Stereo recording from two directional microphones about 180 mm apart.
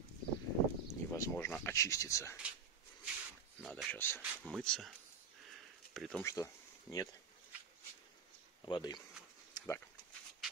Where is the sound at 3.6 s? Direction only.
Centre (ahead or behind).